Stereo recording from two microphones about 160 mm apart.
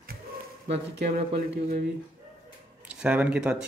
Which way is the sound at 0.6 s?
90° right.